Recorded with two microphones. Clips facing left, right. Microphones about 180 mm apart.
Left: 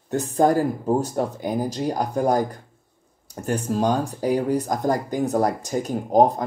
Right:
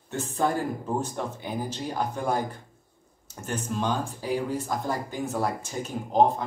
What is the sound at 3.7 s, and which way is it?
A man's voice, 40° left (ahead or behind).